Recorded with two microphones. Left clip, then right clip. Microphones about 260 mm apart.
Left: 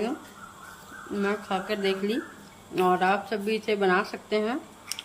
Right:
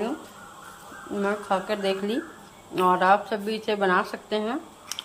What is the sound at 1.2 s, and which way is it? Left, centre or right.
A woman's voice, centre.